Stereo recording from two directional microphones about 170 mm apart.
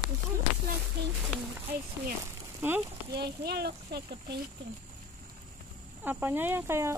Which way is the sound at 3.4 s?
70° right (ahead or behind).